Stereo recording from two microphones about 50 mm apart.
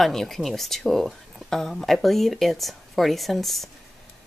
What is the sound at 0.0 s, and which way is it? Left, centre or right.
Speech, centre.